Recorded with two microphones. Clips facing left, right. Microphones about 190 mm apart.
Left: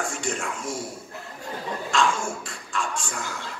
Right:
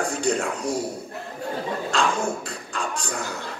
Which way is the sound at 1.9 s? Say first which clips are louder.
Even; 35° right (ahead or behind).